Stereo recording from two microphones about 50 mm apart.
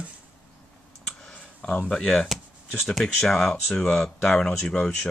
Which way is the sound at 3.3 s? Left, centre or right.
Centre.